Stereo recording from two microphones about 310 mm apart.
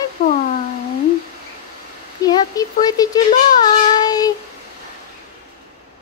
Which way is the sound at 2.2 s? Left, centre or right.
Centre.